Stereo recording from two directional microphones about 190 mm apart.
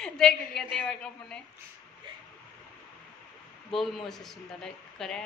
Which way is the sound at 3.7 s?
Centre (ahead or behind).